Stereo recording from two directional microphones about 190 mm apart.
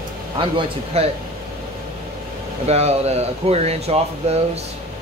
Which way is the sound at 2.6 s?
35° right (ahead or behind).